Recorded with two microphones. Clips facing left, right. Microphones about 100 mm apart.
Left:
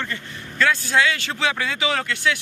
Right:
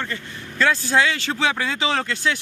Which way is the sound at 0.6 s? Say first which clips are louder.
Right 1 dB; 25° right (ahead or behind).